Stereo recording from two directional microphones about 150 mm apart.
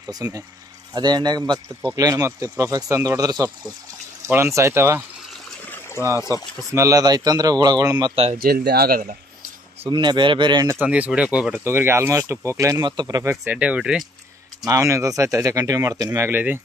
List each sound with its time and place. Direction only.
0.1 s speech: 25° right (ahead or behind)
6.0 s speech: 20° right (ahead or behind)
8.4 s speech: 85° right
9.8 s speech: 30° right (ahead or behind)
10.7 s speech: 10° right (ahead or behind)
14.7 s speech: 20° right (ahead or behind)